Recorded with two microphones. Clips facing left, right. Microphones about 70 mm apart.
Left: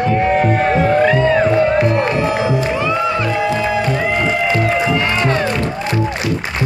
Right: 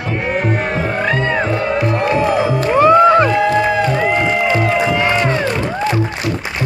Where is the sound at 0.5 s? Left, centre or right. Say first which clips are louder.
Left 5 dB; centre.